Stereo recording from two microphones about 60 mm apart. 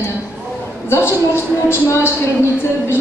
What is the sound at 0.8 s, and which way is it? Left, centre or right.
A woman's voice, left.